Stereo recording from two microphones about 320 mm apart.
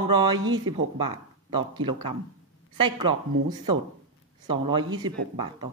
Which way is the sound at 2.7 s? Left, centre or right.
Centre.